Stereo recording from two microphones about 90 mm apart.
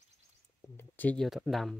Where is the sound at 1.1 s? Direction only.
Centre (ahead or behind).